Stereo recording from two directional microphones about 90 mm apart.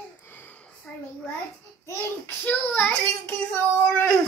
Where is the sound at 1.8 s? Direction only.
25° left (ahead or behind).